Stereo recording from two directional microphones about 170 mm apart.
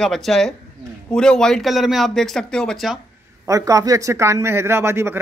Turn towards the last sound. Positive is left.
turn(degrees=-15)  # may be behind; listen again after turning